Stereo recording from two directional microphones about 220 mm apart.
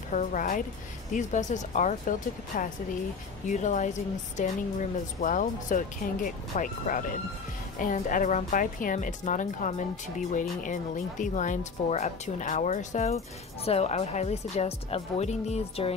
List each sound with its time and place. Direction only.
0.1 s speech: 35° left (ahead or behind)